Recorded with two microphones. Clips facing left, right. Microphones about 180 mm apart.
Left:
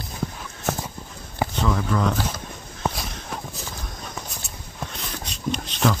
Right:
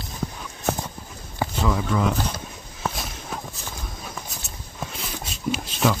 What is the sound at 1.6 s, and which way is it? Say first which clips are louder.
Speech: even; 5° right (ahead or behind).